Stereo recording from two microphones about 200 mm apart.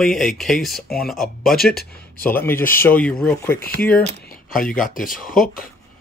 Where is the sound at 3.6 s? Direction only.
45° left (ahead or behind).